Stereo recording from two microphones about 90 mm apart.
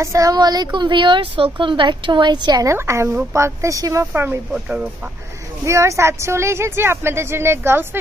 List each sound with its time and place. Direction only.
0.0 s a woman's voice: 35° right (ahead or behind); by 2.6 s 55° right (ahead or behind)
2.6 s speech: 30° right (ahead or behind)
5.7 s speech: 35° right (ahead or behind)